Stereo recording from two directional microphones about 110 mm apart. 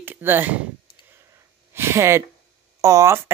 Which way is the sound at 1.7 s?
25° right (ahead or behind).